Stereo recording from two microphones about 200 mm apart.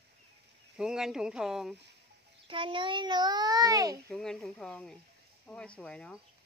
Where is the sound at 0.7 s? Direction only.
5° right (ahead or behind).